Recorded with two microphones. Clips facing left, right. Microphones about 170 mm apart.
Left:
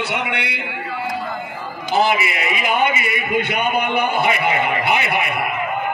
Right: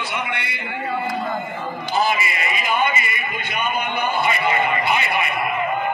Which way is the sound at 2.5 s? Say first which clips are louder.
Left 3 dB; 70° left (ahead or behind).